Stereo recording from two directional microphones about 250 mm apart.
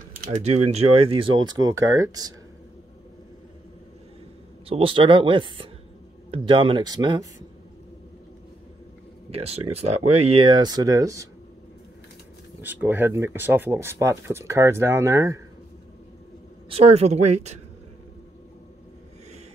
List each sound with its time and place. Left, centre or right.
0.2 s speech: right
4.6 s speech: right
9.3 s speech: right
12.6 s speech: centre
16.6 s speech: right